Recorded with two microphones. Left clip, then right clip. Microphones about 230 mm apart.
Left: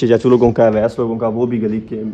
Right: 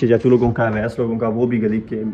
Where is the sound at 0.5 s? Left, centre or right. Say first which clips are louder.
Left 7 dB; left.